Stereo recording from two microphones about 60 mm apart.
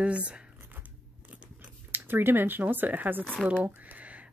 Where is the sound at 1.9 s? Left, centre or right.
Right.